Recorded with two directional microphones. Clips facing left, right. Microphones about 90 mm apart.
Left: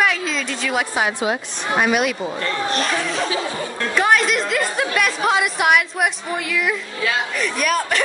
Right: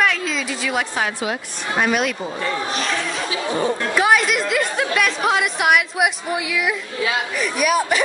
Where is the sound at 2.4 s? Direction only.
5° right (ahead or behind).